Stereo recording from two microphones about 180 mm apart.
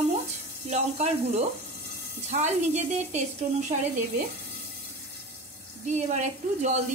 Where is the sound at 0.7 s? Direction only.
40° right (ahead or behind).